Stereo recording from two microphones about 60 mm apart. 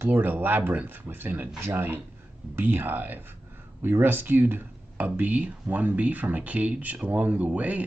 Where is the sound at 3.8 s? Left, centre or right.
Right.